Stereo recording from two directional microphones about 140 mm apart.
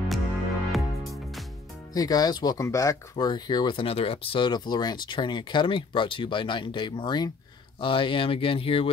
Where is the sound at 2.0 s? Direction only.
25° left (ahead or behind).